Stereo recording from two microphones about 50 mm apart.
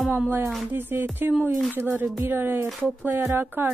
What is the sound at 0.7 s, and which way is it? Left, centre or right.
Speech, right.